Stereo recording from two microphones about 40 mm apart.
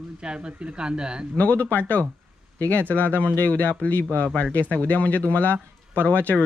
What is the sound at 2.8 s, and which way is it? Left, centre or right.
Speech, right.